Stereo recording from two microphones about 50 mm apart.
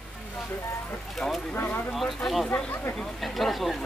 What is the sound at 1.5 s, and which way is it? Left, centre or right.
Speech, left.